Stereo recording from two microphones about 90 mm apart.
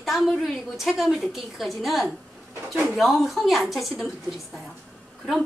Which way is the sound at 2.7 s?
20° right (ahead or behind).